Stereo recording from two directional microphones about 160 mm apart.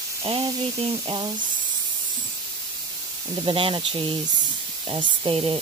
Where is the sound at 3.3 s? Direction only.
30° right (ahead or behind).